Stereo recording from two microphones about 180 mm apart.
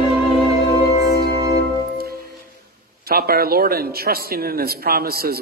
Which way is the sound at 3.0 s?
60° right (ahead or behind).